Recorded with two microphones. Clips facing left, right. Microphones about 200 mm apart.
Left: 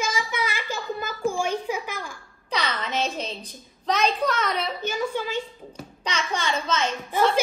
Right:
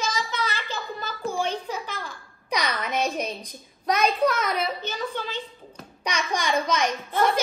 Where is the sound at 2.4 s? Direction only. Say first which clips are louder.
Right 1 dB; 15° right (ahead or behind).